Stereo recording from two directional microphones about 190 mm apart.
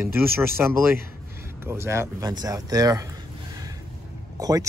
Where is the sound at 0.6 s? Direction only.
10° right (ahead or behind).